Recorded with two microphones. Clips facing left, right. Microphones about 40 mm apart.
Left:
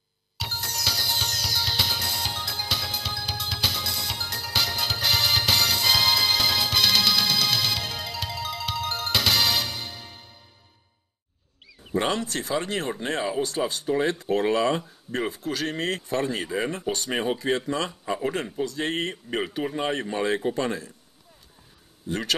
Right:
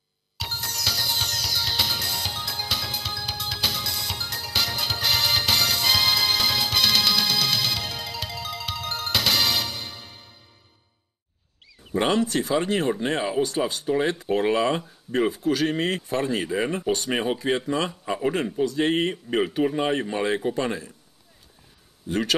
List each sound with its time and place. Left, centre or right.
0.4 s music: centre
12.1 s speech: centre